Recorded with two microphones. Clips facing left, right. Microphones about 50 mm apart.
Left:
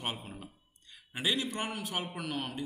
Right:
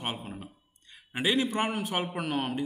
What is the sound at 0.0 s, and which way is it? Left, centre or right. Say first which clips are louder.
A man's voice: right 3 dB; centre.